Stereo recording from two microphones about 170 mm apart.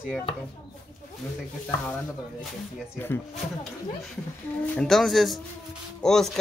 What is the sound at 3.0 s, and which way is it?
Speech, 10° left (ahead or behind).